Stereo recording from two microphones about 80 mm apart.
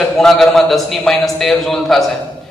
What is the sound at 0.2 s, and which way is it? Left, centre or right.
A man's voice, centre.